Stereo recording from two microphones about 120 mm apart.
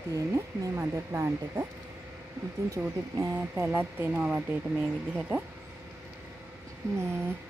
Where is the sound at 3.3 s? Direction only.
15° right (ahead or behind).